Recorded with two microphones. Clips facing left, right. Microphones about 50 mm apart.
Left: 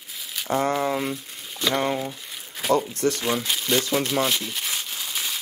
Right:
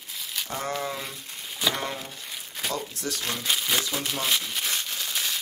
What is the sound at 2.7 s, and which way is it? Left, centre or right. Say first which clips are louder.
Speech: left 13 dB; left.